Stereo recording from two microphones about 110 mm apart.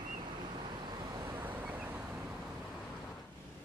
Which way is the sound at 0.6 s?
40° right (ahead or behind).